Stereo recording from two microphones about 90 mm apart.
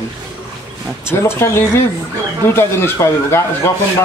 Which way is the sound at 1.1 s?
25° left (ahead or behind).